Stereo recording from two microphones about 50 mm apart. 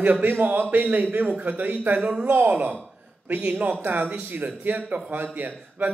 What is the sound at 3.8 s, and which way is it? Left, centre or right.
A man's voice, right.